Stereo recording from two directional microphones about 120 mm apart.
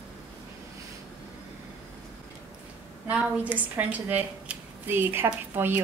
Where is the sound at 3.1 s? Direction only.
10° right (ahead or behind).